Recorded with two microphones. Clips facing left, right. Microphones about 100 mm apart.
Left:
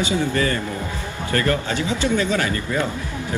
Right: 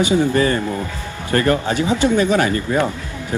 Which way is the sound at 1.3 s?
30° right (ahead or behind).